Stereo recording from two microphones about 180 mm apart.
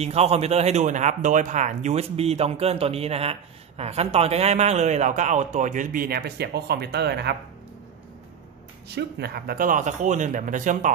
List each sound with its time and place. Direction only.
0.0 s speech: 35° right (ahead or behind); by 7.3 s 65° right (ahead or behind)
8.8 s speech: 65° right (ahead or behind); by 10.9 s 45° right (ahead or behind)